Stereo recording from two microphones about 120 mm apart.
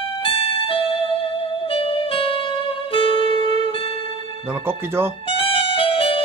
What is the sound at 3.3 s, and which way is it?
Music, 60° right (ahead or behind).